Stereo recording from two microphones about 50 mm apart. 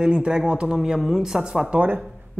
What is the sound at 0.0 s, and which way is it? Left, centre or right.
Speech, centre.